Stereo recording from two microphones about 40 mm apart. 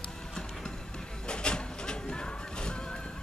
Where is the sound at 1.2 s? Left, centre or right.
Left.